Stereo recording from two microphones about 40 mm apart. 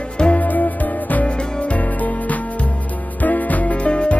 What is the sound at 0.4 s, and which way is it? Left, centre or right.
Music, left.